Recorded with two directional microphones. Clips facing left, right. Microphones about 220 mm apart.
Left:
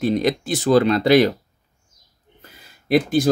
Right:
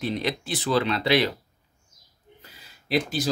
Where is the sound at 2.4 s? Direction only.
50° left (ahead or behind).